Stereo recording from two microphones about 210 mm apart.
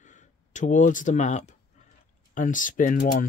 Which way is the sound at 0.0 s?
35° left (ahead or behind).